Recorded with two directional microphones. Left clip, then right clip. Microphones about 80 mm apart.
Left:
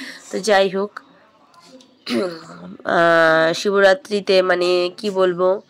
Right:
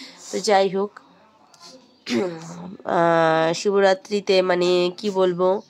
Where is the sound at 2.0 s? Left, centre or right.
Centre.